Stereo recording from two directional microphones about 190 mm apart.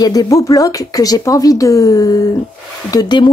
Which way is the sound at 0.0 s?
20° left (ahead or behind).